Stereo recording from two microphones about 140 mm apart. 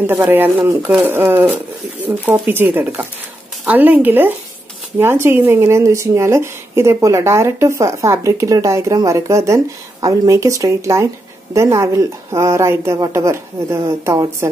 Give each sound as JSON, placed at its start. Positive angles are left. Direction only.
{"t": 0.0, "sound": "speech", "side_deg": -15}